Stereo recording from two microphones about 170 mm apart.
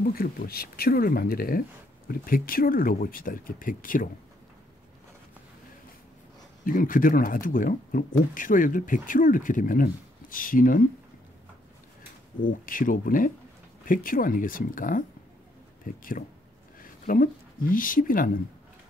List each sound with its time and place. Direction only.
0.1 s speech: 60° left (ahead or behind)
6.6 s speech: 50° left (ahead or behind)
12.4 s speech: 55° left (ahead or behind)